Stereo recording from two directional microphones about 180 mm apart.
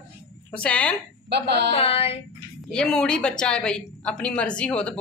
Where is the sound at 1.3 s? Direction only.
70° right (ahead or behind).